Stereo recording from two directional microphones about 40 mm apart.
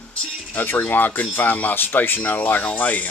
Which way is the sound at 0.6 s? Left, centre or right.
Left.